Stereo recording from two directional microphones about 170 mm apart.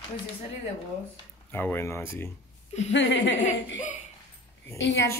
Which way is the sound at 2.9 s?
90° left.